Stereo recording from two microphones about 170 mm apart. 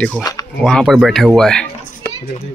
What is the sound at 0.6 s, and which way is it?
Speech, 5° left (ahead or behind).